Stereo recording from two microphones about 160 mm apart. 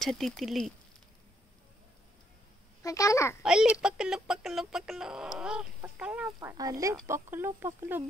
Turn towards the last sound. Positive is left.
turn(degrees=-15)  # may be behind; listen again after turning